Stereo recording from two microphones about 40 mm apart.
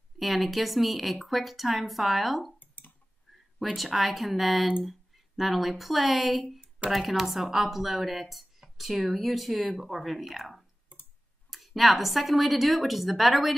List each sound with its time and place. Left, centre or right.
0.2 s speech: centre
2.6 s clicking: left
3.7 s speech: centre